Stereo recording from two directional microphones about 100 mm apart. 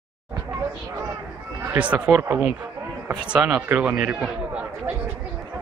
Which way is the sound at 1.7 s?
15° right (ahead or behind).